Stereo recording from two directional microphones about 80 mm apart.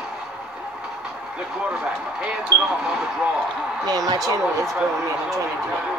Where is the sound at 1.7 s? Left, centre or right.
Centre.